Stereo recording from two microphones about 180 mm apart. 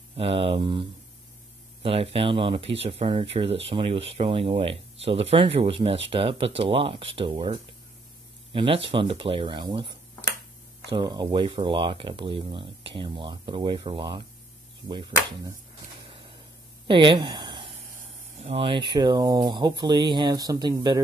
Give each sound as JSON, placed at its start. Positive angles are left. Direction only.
{"t": 0.1, "sound": "speech", "side_deg": -30}
{"t": 16.1, "sound": "a sound", "side_deg": -30}
{"t": 18.4, "sound": "speech", "side_deg": -30}